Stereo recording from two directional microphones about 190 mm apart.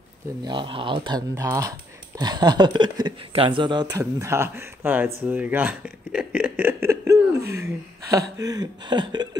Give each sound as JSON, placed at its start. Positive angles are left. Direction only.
{"t": 0.4, "sound": "speech", "side_deg": -25}